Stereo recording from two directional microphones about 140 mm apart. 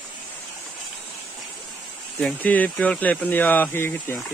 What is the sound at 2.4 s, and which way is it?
Speech, 10° left (ahead or behind).